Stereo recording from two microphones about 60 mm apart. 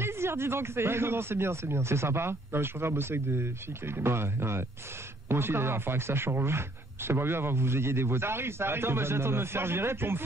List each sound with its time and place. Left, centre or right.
0.0 s speech: right